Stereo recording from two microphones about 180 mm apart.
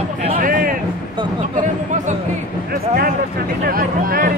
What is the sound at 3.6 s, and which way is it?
Speech, 55° right (ahead or behind).